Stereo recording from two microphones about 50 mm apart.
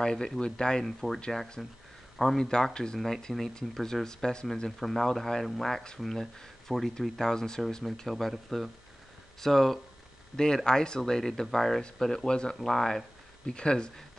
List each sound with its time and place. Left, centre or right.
0.0 s speech: centre
0.8 s speech: centre
4.6 s speech: centre